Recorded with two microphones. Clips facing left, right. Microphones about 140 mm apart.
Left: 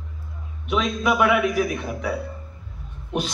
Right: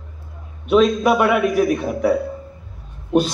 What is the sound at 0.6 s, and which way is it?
Speech, 45° right (ahead or behind).